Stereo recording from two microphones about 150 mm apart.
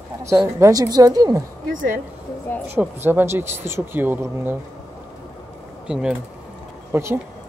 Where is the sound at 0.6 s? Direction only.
25° right (ahead or behind).